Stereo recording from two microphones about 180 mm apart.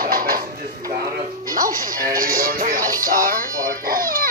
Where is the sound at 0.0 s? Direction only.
55° right (ahead or behind).